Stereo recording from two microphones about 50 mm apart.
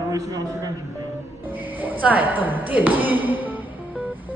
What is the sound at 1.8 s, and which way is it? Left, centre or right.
A woman's voice, right.